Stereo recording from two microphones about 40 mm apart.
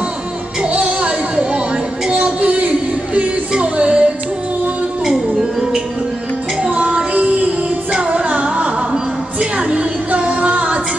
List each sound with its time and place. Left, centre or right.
0.7 s music: right
3.2 s yodeling: right
6.6 s music: right